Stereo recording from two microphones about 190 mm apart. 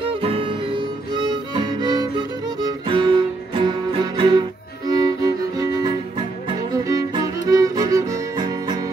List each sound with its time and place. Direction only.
0.0 s music: 30° right (ahead or behind)